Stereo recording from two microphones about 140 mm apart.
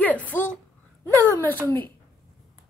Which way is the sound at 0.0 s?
10° left (ahead or behind).